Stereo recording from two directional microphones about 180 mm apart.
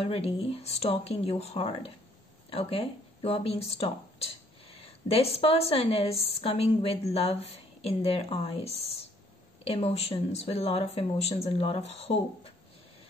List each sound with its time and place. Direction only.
0.0 s speech: 35° left (ahead or behind)